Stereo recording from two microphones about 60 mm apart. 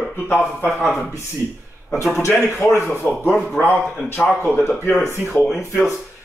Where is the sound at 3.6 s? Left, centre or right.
Left.